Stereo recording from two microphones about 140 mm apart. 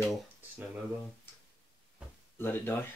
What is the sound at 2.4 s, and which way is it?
Speech, 15° left (ahead or behind).